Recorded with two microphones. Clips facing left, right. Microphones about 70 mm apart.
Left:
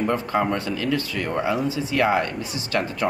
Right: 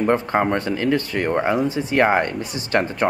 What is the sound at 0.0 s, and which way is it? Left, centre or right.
Speech, right.